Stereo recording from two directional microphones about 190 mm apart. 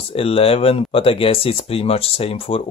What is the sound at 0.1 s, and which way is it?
Speech, 30° left (ahead or behind).